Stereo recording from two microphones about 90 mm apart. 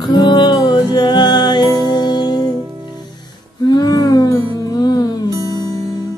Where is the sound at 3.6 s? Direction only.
50° left (ahead or behind).